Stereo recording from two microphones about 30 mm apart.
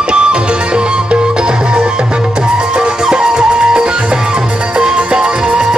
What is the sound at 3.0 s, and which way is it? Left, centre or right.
Music, right.